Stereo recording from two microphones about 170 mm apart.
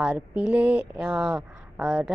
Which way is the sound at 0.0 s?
5° right (ahead or behind).